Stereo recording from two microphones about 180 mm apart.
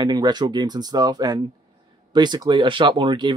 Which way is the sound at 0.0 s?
20° right (ahead or behind).